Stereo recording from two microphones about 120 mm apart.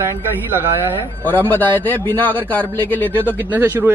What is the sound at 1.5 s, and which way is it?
A man's voice, 15° left (ahead or behind).